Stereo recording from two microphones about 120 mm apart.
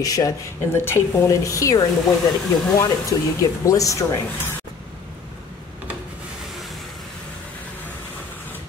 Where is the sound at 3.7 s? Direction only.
30° left (ahead or behind).